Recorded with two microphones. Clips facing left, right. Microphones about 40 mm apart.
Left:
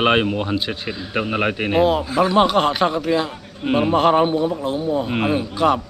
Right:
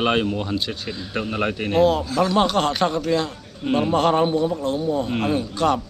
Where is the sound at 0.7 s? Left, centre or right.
Centre.